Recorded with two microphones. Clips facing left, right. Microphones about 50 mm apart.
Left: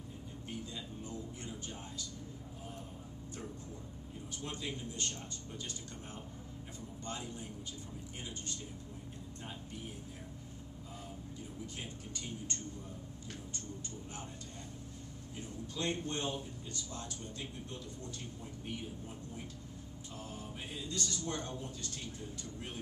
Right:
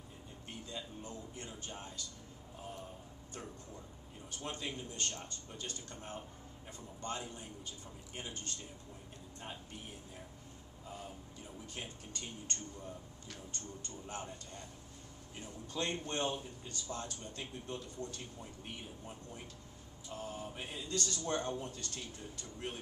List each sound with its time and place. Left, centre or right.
1.0 s a man's voice: right
4.4 s a man's voice: right
11.7 s a man's voice: right
15.7 s a man's voice: right
20.2 s a man's voice: right